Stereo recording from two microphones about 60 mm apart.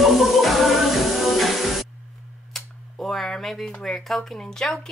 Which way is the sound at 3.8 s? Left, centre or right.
Centre.